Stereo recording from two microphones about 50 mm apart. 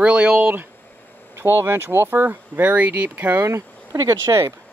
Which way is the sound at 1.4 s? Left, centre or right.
Right.